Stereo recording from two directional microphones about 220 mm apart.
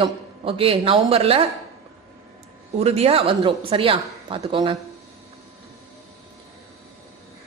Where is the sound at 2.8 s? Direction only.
25° right (ahead or behind).